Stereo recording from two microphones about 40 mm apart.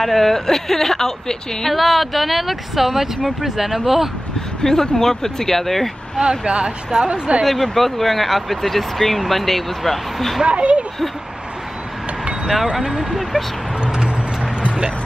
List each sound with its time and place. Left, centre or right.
0.0 s speech: centre
2.0 s speech: centre
4.6 s speech: centre
6.2 s speech: right
7.4 s speech: centre
10.4 s speech: right
12.7 s speech: centre
13.8 s a sound: centre